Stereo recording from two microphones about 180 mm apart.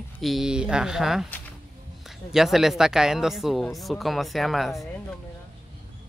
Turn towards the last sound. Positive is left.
turn(degrees=0)  # may be behind; listen again after turning